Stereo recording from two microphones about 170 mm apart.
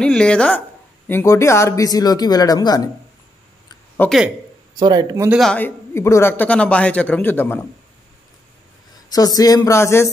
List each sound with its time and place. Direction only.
0.0 s a woman's voice: 5° left (ahead or behind); by 2.9 s 20° left (ahead or behind)
4.0 s a man's voice: 10° left (ahead or behind)
4.7 s speech: 25° right (ahead or behind)
5.4 s a man's voice: 10° left (ahead or behind)
9.1 s speech: 20° left (ahead or behind)